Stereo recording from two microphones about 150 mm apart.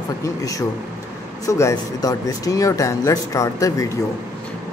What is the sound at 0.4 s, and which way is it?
Speech, 25° left (ahead or behind).